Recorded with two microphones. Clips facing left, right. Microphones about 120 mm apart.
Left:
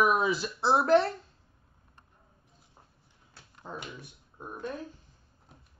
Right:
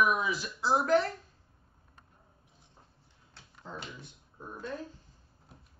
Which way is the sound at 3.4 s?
15° left (ahead or behind).